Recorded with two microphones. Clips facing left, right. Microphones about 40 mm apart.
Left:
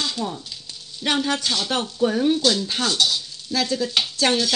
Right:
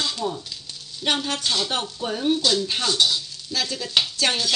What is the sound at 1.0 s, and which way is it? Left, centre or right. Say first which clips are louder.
Stir: left 1 dB; left.